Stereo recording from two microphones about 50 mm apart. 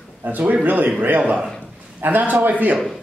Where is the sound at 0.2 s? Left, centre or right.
Right.